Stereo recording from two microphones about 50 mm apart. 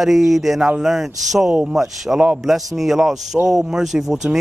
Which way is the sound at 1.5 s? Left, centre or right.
Centre.